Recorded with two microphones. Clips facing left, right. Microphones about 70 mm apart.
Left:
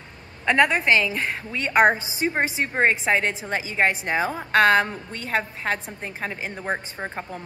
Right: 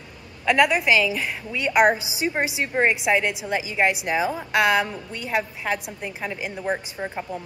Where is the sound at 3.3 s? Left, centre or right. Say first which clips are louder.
Right 1 dB; left.